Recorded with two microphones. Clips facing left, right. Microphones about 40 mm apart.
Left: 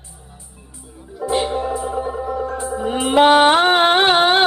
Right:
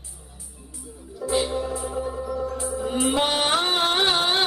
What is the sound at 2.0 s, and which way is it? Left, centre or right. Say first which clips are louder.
Music: left 5 dB; left.